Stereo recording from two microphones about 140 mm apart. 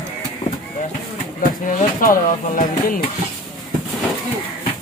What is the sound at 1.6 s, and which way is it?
Speech, 75° left (ahead or behind).